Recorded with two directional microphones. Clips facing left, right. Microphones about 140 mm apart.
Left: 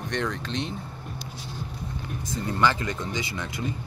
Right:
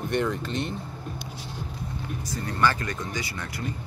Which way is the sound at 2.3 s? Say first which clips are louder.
Left 1 dB; 20° left (ahead or behind).